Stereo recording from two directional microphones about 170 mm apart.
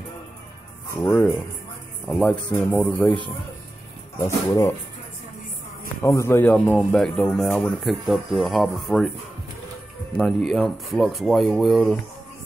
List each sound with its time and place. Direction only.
0.9 s speech: 10° left (ahead or behind)
4.2 s speech: 15° left (ahead or behind)
6.0 s speech: 15° left (ahead or behind)
10.1 s speech: centre (ahead or behind)